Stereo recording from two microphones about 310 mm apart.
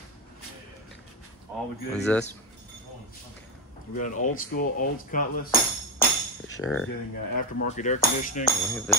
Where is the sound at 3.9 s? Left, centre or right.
Left.